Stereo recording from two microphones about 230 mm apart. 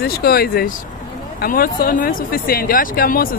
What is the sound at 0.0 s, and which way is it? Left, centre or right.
Speech, left.